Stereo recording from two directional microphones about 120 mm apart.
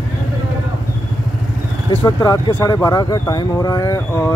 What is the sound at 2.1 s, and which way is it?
Speech, 35° left (ahead or behind).